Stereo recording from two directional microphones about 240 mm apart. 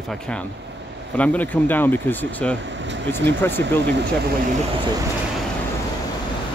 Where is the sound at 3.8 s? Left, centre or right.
Right.